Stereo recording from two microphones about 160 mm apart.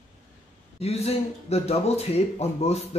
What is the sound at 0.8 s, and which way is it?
A man's voice, 40° left (ahead or behind).